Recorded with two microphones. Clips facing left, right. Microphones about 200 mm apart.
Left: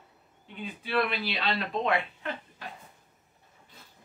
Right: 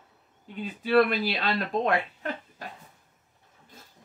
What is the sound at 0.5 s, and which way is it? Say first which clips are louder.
Speech: right 8 dB; 40° right (ahead or behind).